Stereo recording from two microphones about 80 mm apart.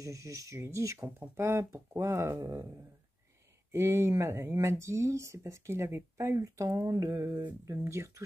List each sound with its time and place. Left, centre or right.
0.0 s speech: right
3.7 s speech: right